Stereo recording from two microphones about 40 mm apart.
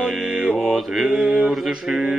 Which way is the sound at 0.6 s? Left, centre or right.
Centre.